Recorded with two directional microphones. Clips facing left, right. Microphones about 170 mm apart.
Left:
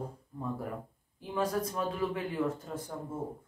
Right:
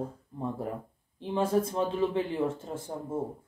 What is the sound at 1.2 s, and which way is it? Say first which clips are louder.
Speech: right 5 dB; 25° right (ahead or behind).